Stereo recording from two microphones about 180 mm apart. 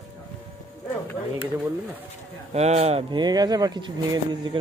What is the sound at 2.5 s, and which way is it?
Speech, 35° right (ahead or behind).